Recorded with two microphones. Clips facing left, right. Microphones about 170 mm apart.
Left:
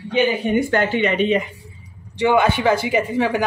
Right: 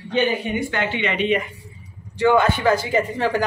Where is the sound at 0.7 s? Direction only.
45° left (ahead or behind).